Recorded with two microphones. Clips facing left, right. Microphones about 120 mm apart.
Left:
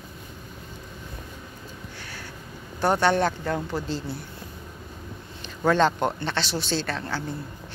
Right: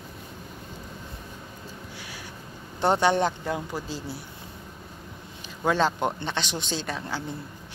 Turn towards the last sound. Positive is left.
turn(degrees=-15)  # may be behind; listen again after turning